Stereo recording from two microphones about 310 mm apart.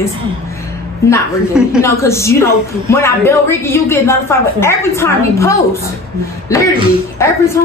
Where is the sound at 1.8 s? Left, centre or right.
Centre.